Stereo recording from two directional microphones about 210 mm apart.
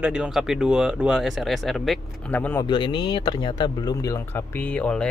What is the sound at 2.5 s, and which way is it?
Speech, 20° left (ahead or behind).